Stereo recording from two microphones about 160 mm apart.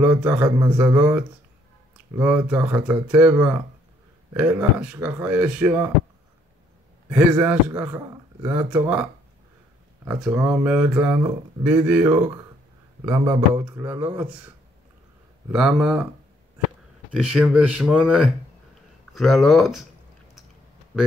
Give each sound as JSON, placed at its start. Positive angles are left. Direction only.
{"t": 0.0, "sound": "speech", "side_deg": -10}
{"t": 0.6, "sound": "a man's voice", "side_deg": -20}
{"t": 0.9, "sound": "speech", "side_deg": -10}
{"t": 7.1, "sound": "speech", "side_deg": -10}
{"t": 10.0, "sound": "speech", "side_deg": -5}
{"t": 15.5, "sound": "speech", "side_deg": -5}
{"t": 17.1, "sound": "speech", "side_deg": -5}